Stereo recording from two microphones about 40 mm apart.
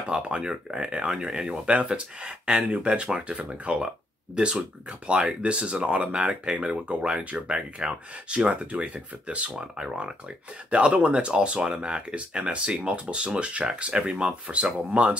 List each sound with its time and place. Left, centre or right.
0.1 s speech: right